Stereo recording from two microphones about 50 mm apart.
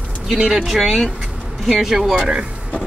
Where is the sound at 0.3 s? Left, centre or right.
Centre.